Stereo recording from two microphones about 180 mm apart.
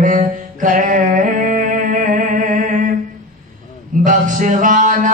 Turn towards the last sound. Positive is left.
turn(degrees=-45)  # may be behind; listen again after turning